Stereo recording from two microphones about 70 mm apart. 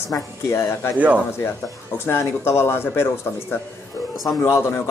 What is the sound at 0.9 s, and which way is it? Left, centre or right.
Speech, right.